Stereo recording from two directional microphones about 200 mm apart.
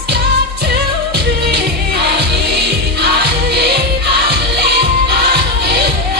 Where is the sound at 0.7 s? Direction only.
55° right (ahead or behind).